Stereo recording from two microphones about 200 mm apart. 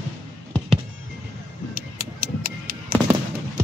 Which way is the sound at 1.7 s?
45° right (ahead or behind).